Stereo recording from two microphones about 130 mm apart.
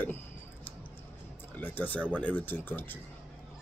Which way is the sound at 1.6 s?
15° left (ahead or behind).